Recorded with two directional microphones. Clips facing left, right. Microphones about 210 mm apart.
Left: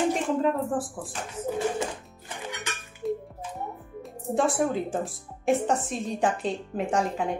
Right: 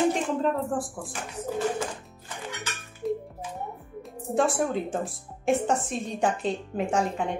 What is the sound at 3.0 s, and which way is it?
Music, centre (ahead or behind).